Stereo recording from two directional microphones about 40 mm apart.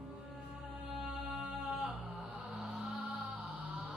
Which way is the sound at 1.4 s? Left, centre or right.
Right.